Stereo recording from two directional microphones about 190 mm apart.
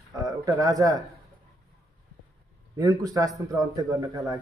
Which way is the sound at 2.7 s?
20° right (ahead or behind).